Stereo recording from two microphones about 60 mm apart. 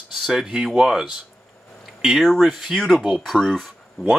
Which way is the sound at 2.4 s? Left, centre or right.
Centre.